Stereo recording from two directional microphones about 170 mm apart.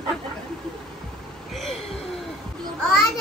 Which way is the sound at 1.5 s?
Centre (ahead or behind).